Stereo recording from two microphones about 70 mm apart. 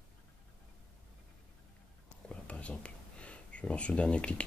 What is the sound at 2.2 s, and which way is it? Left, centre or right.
Whispering, centre.